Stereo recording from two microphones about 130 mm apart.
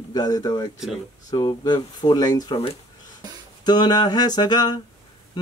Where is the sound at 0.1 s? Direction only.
30° left (ahead or behind).